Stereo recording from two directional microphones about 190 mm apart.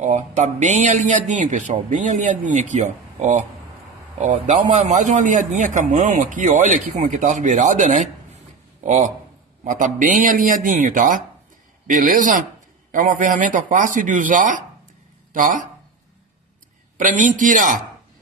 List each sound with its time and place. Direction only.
0.0 s a man's voice: 40° right (ahead or behind)
16.9 s speech: 40° right (ahead or behind)